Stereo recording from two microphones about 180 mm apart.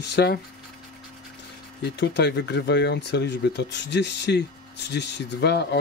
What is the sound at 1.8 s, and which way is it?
Speech, 70° left (ahead or behind).